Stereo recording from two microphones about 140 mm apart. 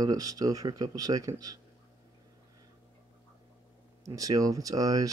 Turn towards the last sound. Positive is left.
turn(degrees=-25)  # may be behind; listen again after turning